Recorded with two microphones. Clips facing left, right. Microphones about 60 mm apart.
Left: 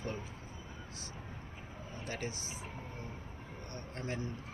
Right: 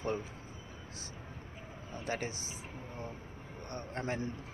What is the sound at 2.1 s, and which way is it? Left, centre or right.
Speech, right.